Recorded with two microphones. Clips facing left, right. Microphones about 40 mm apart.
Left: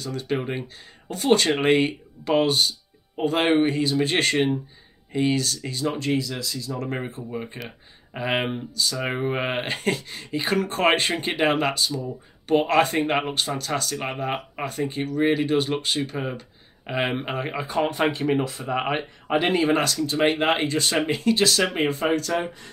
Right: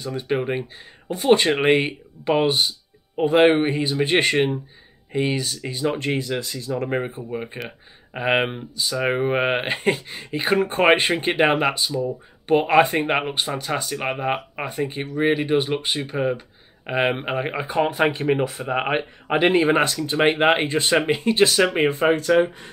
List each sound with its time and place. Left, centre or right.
0.0 s speech: right
0.4 s speech: centre; by 22.7 s right